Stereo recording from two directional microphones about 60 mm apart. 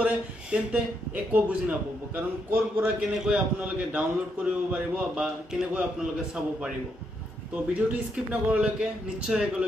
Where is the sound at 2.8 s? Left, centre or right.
Centre.